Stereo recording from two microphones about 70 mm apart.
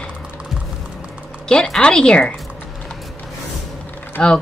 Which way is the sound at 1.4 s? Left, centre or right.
Centre.